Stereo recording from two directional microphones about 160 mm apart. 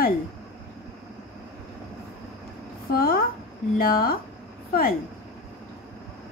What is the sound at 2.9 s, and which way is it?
A woman's voice, 70° left (ahead or behind).